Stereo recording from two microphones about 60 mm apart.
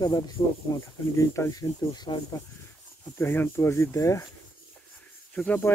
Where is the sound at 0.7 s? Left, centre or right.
Left.